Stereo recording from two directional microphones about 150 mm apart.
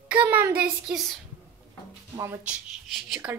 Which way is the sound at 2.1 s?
20° right (ahead or behind).